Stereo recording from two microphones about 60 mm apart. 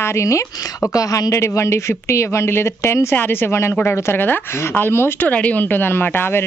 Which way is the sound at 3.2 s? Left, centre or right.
Left.